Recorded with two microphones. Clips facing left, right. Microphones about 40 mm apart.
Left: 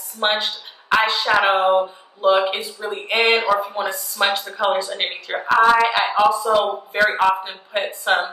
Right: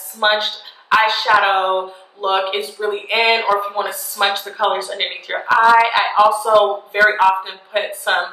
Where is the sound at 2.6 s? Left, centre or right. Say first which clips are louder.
Right 6 dB; right.